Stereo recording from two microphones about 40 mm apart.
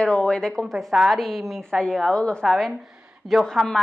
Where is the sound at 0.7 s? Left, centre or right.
Centre.